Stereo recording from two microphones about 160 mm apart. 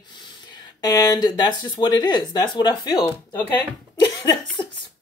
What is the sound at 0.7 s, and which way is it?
Speech, 25° left (ahead or behind).